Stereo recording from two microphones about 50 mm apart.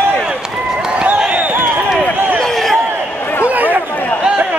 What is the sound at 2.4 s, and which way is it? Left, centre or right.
Basketball bounce, centre.